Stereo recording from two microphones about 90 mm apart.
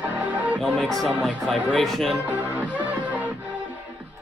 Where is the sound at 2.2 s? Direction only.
15° right (ahead or behind).